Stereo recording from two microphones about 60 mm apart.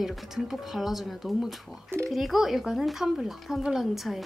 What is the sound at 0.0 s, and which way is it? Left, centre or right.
A woman's voice, centre.